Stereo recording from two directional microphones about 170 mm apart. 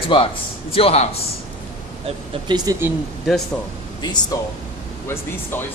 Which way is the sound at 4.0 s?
25° left (ahead or behind).